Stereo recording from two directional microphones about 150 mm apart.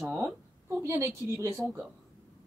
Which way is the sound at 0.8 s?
20° right (ahead or behind).